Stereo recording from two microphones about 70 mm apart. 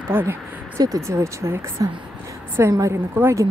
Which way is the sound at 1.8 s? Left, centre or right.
Right.